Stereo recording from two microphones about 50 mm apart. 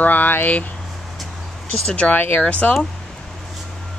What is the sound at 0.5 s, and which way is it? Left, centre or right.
Speech, left.